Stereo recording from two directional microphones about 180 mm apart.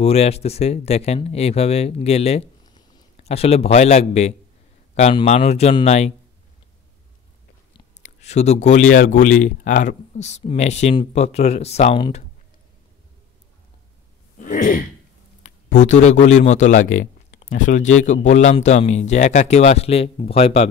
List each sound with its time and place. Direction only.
0.0 s speech: 35° left (ahead or behind)
2.6 s a sound: 25° left (ahead or behind)
3.3 s speech: 35° left (ahead or behind)
8.0 s speech: 40° left (ahead or behind)
14.4 s throat clearing: 50° left (ahead or behind)
15.4 s a man's voice: 40° left (ahead or behind)